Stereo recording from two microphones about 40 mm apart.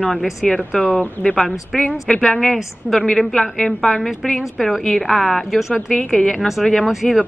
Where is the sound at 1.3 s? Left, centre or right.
Centre.